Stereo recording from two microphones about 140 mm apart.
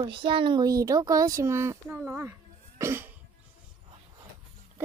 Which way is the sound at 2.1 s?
20° right (ahead or behind).